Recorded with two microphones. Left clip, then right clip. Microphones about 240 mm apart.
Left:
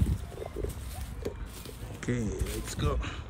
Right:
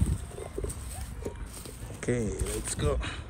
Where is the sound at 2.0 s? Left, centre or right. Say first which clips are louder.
Right 4 dB; centre.